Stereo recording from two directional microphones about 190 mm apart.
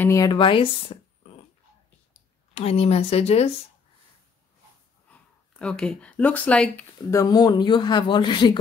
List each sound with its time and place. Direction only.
0.0 s speech: 15° left (ahead or behind)
2.5 s speech: 30° left (ahead or behind)
5.1 s speech: 5° left (ahead or behind); by 8.5 s 25° left (ahead or behind)